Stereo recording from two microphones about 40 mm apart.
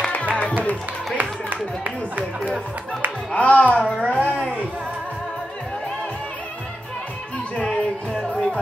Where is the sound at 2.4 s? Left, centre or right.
Left.